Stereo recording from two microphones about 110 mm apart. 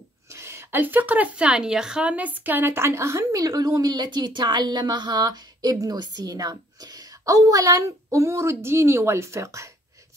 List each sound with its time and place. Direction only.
0.3 s speech: 25° right (ahead or behind)